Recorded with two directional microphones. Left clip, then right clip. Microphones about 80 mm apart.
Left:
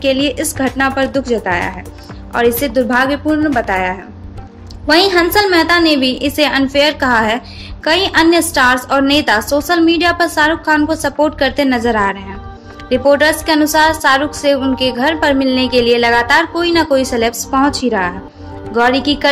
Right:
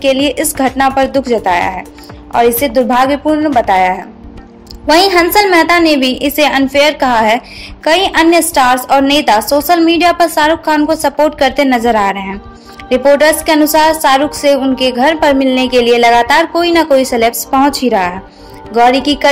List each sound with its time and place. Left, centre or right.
0.0 s a woman's voice: right
2.3 s a woman's voice: right
3.3 s a woman's voice: centre
3.5 s a woman's voice: right